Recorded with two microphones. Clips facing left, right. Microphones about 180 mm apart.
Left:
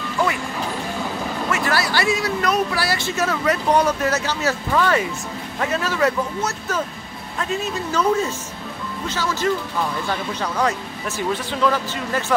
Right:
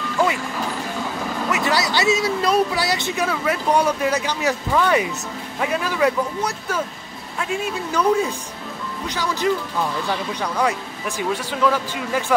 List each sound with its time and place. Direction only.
1.5 s speech: 20° right (ahead or behind)
9.8 s speech: centre (ahead or behind)